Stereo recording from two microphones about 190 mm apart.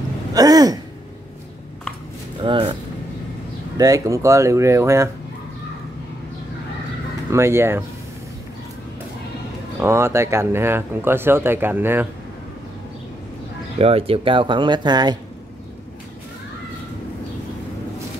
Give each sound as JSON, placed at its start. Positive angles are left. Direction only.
{"t": 0.3, "sound": "speech", "side_deg": -20}
{"t": 2.4, "sound": "a sound", "side_deg": -25}
{"t": 3.7, "sound": "speech", "side_deg": -20}
{"t": 7.2, "sound": "speech", "side_deg": -15}
{"t": 9.8, "sound": "speech", "side_deg": -15}
{"t": 13.7, "sound": "speech", "side_deg": -30}